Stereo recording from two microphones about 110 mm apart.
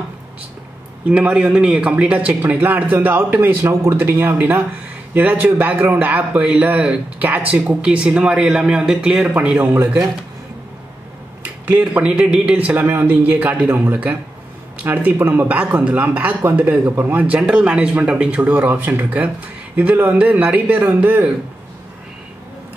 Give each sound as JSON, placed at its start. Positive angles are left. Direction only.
{"t": 1.0, "sound": "speech", "side_deg": -10}
{"t": 11.6, "sound": "speech", "side_deg": -15}